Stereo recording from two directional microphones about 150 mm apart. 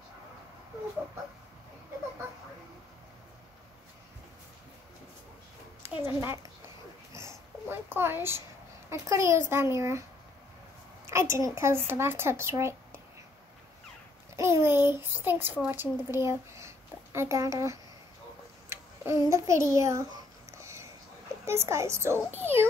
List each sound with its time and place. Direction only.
5.8 s a child's voice: 15° right (ahead or behind)
7.1 s a sound: 20° right (ahead or behind)
8.9 s a child's voice: 20° right (ahead or behind)
11.1 s speech: 20° right (ahead or behind)
14.3 s a child's voice: 20° right (ahead or behind)
18.7 s a sound: 20° right (ahead or behind)
21.5 s speech: 20° right (ahead or behind)